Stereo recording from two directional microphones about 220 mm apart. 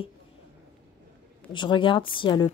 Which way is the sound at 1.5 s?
20° left (ahead or behind).